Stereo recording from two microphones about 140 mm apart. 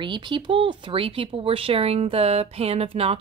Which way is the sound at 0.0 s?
35° right (ahead or behind).